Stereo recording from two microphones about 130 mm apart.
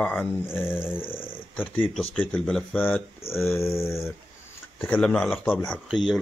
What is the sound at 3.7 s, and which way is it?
Dog, 20° left (ahead or behind).